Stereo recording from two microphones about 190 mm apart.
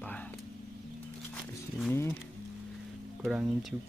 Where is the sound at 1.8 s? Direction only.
10° left (ahead or behind).